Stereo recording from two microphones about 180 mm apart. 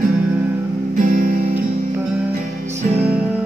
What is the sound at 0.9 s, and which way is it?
Music, 50° right (ahead or behind).